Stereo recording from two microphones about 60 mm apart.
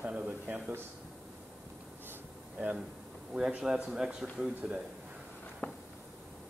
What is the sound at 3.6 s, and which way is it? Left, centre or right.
Speech, centre.